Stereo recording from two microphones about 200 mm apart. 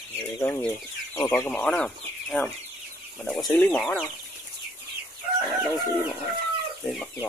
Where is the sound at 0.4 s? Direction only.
10° left (ahead or behind).